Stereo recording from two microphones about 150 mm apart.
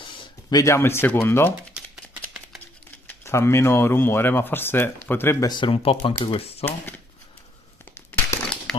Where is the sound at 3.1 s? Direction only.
15° left (ahead or behind).